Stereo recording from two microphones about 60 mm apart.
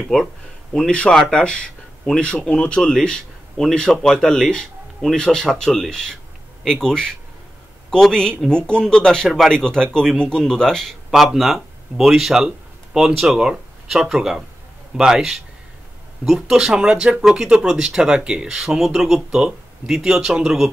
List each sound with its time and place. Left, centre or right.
0.0 s speech: centre
0.7 s speech: centre